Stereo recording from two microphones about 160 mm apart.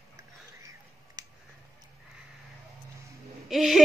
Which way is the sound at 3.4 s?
Centre (ahead or behind).